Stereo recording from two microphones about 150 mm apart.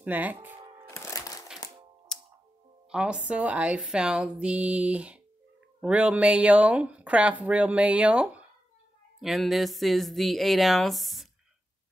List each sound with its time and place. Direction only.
0.0 s speech: 10° right (ahead or behind)
0.8 s music: 20° left (ahead or behind)
2.1 s music: 5° left (ahead or behind)
2.9 s a woman's voice: 5° right (ahead or behind)